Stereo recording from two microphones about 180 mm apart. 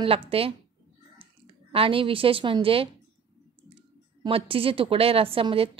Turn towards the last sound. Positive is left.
turn(degrees=-30)  # may be behind; listen again after turning